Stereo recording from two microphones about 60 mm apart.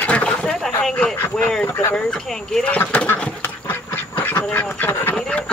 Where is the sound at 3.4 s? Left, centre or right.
Left.